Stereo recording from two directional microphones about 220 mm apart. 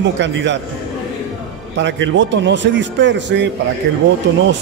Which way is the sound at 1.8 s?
55° right (ahead or behind).